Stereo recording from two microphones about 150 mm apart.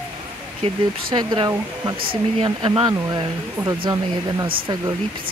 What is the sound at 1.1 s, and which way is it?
Speech, 30° right (ahead or behind).